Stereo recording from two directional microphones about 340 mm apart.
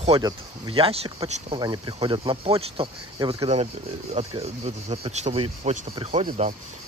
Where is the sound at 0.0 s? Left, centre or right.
Centre.